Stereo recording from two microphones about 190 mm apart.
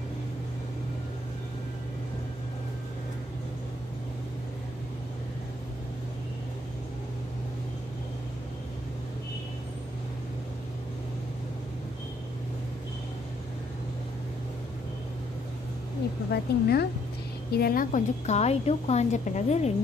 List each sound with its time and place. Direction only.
16.3 s a woman's voice: 55° left (ahead or behind); by 19.7 s 35° left (ahead or behind)